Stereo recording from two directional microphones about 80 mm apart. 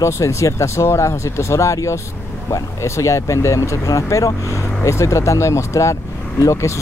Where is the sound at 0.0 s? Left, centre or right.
Left.